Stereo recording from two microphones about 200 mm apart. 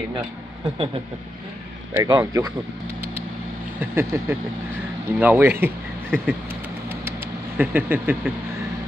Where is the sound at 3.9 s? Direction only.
10° right (ahead or behind).